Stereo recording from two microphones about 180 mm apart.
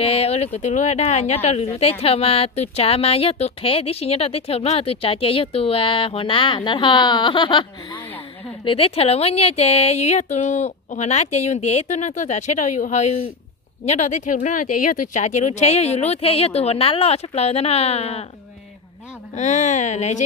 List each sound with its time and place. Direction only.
0.0 s speech: 35° left (ahead or behind)
19.3 s speech: 40° left (ahead or behind)